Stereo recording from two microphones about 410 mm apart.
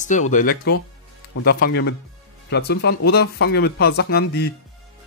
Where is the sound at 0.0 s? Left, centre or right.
Centre.